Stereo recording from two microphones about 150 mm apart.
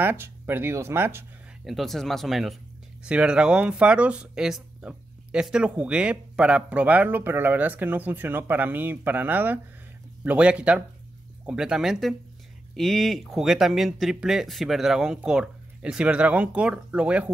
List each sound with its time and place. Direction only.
0.0 s speech: 15° right (ahead or behind)
1.6 s speech: centre (ahead or behind)